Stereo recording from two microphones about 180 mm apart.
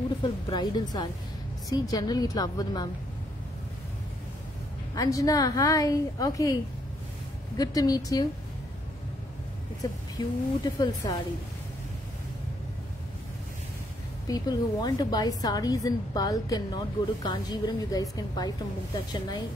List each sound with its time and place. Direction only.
0.2 s a woman's voice: 25° left (ahead or behind)
4.9 s a woman's voice: 20° left (ahead or behind)
10.1 s a woman's voice: 20° left (ahead or behind)
14.2 s a woman's voice: 20° left (ahead or behind)